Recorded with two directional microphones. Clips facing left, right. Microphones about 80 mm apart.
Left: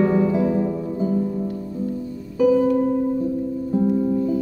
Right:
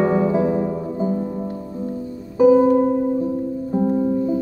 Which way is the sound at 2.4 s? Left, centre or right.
Right.